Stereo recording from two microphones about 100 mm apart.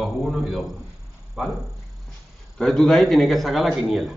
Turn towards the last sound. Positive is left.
turn(degrees=0)  # may be behind; listen again after turning